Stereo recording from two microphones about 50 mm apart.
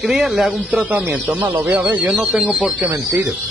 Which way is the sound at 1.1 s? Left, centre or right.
Right.